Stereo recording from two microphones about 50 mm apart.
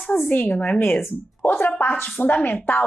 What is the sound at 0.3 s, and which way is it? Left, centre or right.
Speech, left.